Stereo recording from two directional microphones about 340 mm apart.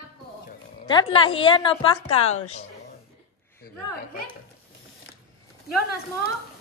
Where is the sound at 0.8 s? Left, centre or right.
Centre.